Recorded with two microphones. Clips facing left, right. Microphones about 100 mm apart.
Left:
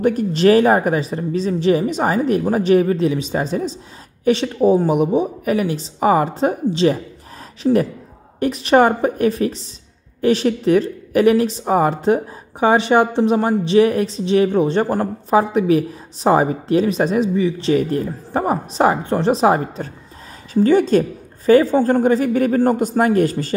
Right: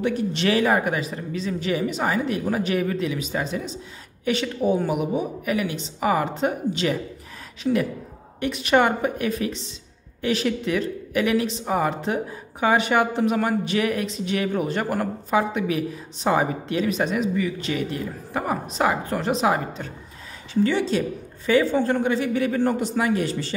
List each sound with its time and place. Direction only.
0.0 s a woman's voice: 45° left (ahead or behind)